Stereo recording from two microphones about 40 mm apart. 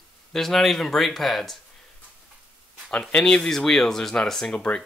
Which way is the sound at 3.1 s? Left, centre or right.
Left.